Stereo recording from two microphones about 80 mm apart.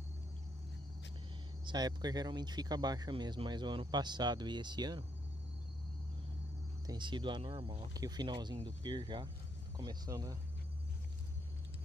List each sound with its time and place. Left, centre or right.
1.7 s speech: right
3.1 s speech: right
7.0 s speech: right
7.9 s speech: right
10.0 s speech: right